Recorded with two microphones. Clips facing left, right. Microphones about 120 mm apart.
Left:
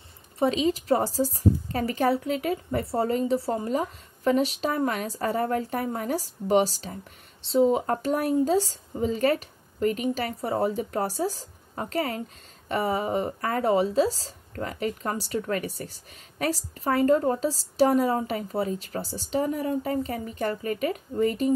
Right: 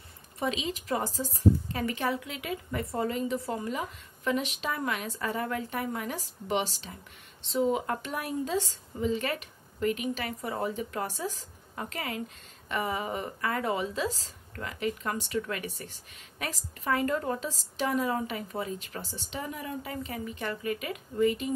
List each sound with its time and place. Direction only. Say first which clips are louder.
0.4 s speech: left 8 dB; 40° left (ahead or behind)